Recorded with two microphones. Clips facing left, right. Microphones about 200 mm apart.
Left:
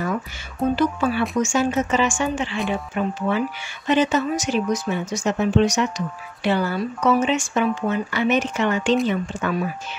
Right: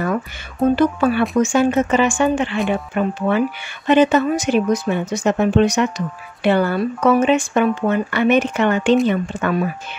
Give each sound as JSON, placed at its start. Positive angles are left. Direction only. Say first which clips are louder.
{"t": 0.7, "sound": "speech", "louder": "right 5 dB", "side_deg": -60}